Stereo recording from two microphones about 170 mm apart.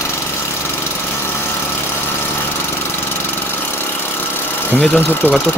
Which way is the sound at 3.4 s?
15° left (ahead or behind).